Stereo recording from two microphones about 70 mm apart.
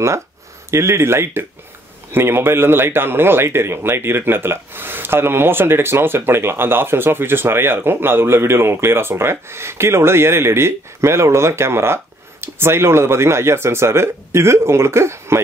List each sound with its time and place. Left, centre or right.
0.7 s a man's voice: right